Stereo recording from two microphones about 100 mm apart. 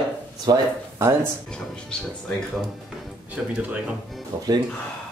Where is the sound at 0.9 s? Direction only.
30° right (ahead or behind).